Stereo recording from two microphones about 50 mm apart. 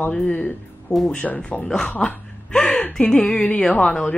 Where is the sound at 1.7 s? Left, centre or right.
Centre.